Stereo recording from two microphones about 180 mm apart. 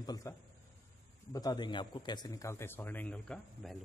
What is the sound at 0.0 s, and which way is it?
Speech, 20° left (ahead or behind).